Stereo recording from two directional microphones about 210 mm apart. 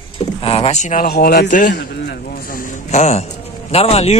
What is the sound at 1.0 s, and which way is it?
Speech, 50° left (ahead or behind).